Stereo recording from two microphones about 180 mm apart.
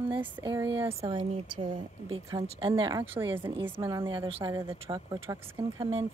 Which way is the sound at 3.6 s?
15° right (ahead or behind).